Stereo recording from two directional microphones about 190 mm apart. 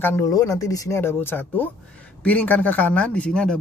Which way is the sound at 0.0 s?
15° left (ahead or behind).